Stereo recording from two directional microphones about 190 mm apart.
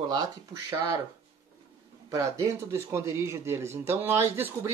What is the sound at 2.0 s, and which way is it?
Speech, 15° right (ahead or behind).